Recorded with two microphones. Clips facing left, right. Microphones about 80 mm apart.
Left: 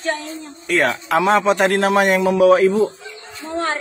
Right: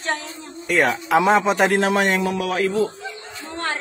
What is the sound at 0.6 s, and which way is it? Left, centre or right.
A man's voice, centre.